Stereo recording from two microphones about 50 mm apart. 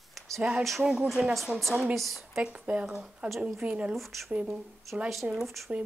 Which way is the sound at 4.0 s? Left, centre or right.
Centre.